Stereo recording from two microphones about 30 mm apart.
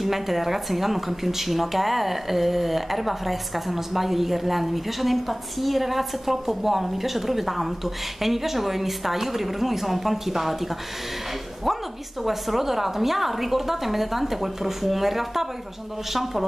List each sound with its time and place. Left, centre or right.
0.0 s a woman's voice: centre